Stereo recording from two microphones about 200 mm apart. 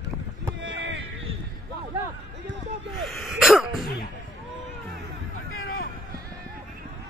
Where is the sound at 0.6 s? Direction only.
65° right (ahead or behind).